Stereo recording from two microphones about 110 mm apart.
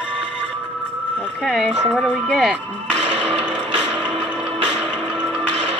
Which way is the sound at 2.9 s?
60° right (ahead or behind).